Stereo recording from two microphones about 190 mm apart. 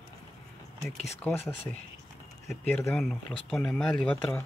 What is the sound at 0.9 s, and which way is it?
Speech, 35° left (ahead or behind).